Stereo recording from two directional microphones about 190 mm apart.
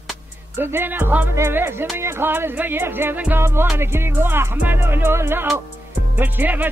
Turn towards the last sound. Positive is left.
turn(degrees=-10)  # may be behind; listen again after turning